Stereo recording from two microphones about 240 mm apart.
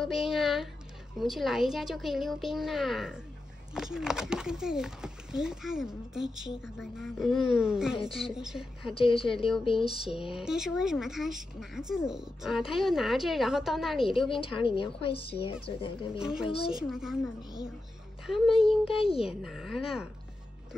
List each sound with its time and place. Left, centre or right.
0.0 s speech: centre
8.8 s a woman's voice: left
10.3 s speech: centre
14.3 s a woman's voice: left
16.1 s speech: centre
16.4 s a woman's voice: left
16.7 s speech: centre
18.6 s a woman's voice: left
19.4 s speech: centre